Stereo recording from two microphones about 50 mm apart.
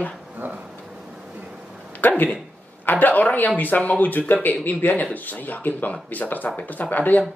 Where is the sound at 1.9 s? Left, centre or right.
Left.